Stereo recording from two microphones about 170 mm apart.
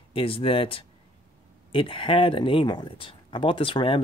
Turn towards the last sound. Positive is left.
turn(degrees=30)  # may be behind; listen again after turning